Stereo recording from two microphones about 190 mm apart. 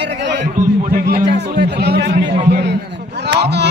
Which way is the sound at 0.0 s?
65° right (ahead or behind).